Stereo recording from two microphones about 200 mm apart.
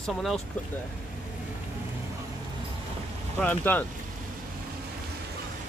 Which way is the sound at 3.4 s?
10° left (ahead or behind).